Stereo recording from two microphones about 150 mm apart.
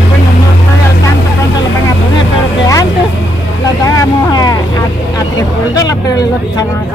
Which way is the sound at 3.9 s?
25° left (ahead or behind).